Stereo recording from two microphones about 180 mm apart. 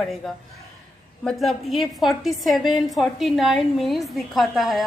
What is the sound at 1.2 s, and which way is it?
A woman's voice, centre (ahead or behind).